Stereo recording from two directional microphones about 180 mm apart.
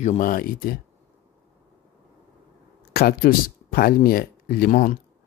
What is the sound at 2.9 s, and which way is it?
Speech, 55° left (ahead or behind).